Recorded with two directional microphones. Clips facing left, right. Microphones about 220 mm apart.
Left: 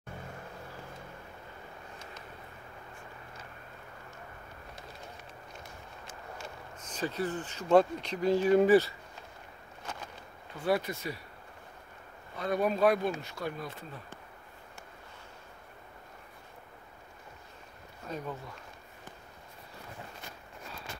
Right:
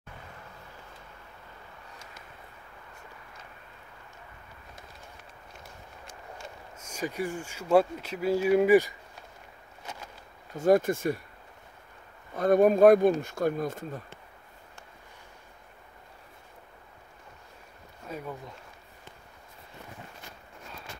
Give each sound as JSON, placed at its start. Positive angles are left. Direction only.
{"t": 6.8, "sound": "speech", "side_deg": -10}
{"t": 10.5, "sound": "speech", "side_deg": -45}
{"t": 12.4, "sound": "speech", "side_deg": -50}
{"t": 18.0, "sound": "speech", "side_deg": -10}